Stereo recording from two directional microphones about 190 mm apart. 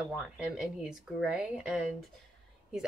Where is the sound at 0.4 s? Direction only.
5° right (ahead or behind).